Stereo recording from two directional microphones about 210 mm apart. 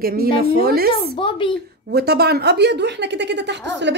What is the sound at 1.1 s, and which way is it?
Speech, 25° left (ahead or behind).